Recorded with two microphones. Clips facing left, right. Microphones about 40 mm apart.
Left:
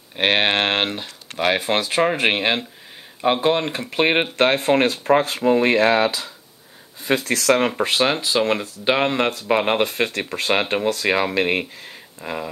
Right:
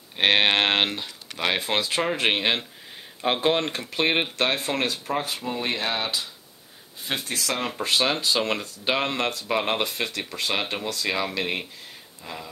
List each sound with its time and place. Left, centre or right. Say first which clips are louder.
0.2 s speech: left 2 dB; left
1.7 s speech: left 5 dB; left
2.3 s speech: left 3 dB; left
3.2 s speech: left 4 dB; centre
3.7 s speech: left 5 dB; left
7.7 s speech: left 4 dB; left
9.8 s speech: left 7 dB; left